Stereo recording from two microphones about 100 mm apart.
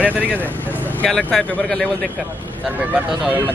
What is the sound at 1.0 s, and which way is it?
Speech, 10° left (ahead or behind).